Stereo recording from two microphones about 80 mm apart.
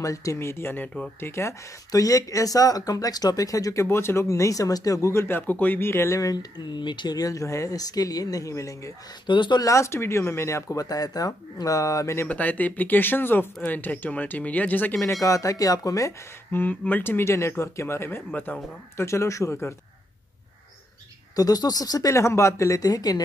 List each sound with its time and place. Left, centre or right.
0.0 s speech: left
1.9 s speech: left
3.8 s speech: left
6.3 s speech: left
9.2 s speech: left
9.6 s speech: left
10.9 s speech: left
12.3 s speech: centre
15.2 s speech: left
16.5 s speech: left
18.3 s speech: centre
18.9 s speech: left
21.4 s speech: left
22.1 s speech: left